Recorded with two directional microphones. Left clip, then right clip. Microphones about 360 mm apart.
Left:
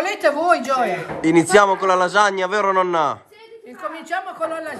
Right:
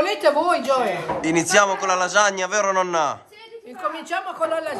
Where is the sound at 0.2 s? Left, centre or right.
Centre.